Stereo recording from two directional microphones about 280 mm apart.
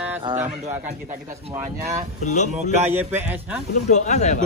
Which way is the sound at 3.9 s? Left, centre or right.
Left.